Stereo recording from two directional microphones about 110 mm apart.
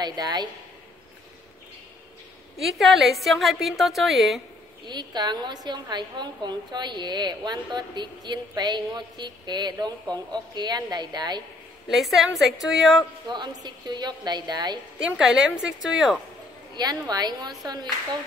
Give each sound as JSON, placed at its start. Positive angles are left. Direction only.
{"t": 0.0, "sound": "a woman's voice", "side_deg": -40}
{"t": 2.8, "sound": "a woman's voice", "side_deg": 0}
{"t": 4.8, "sound": "a woman's voice", "side_deg": -40}
{"t": 11.9, "sound": "a woman's voice", "side_deg": 0}
{"t": 13.3, "sound": "a woman's voice", "side_deg": -40}
{"t": 15.1, "sound": "a woman's voice", "side_deg": -5}
{"t": 16.7, "sound": "a woman's voice", "side_deg": -35}